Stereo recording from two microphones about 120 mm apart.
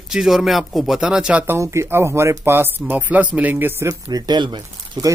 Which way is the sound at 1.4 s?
20° right (ahead or behind).